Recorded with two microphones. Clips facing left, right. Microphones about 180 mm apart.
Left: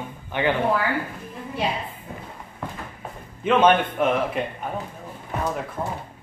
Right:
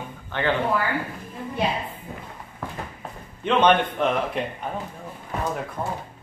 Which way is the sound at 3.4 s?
5° left (ahead or behind).